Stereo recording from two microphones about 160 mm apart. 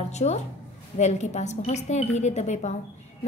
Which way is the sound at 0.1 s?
45° left (ahead or behind).